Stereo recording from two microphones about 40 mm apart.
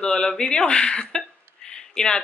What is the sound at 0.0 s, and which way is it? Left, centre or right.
Speech, centre.